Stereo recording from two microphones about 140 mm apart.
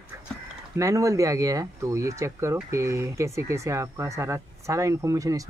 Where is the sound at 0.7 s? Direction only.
20° right (ahead or behind).